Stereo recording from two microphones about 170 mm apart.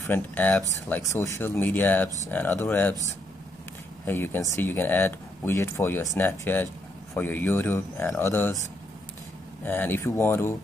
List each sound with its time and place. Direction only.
0.0 s speech: 10° left (ahead or behind)
4.0 s speech: 10° left (ahead or behind)
9.7 s speech: 10° left (ahead or behind)